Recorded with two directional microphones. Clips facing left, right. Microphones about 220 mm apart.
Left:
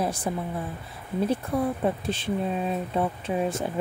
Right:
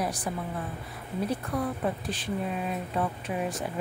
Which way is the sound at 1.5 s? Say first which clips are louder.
Left 4 dB; 25° left (ahead or behind).